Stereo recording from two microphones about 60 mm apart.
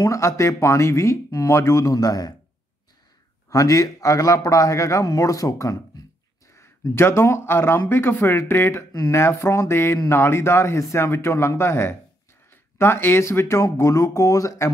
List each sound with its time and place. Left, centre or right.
0.1 s speech: left
2.0 s a man's voice: left
3.4 s a man's voice: left
6.5 s speech: left